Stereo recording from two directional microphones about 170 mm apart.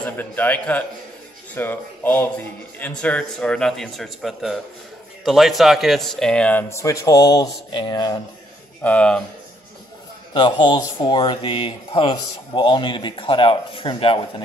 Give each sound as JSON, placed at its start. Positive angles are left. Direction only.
{"t": 0.0, "sound": "speech", "side_deg": 10}
{"t": 8.8, "sound": "speech", "side_deg": 5}
{"t": 10.3, "sound": "speech", "side_deg": 25}